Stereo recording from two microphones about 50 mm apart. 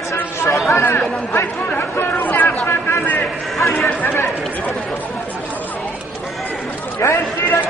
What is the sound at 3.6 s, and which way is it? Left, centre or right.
Music, left.